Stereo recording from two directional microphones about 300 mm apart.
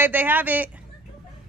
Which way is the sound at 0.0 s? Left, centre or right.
Centre.